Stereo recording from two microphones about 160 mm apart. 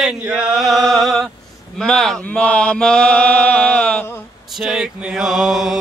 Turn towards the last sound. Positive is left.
turn(degrees=0)  # may be behind; listen again after turning